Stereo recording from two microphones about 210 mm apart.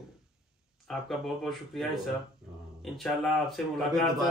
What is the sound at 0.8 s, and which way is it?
Speech, centre (ahead or behind).